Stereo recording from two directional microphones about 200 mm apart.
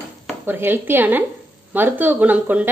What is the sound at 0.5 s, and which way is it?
Speech, 10° right (ahead or behind).